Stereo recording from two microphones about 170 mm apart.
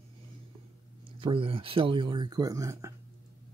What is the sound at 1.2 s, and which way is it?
Speech, 30° right (ahead or behind).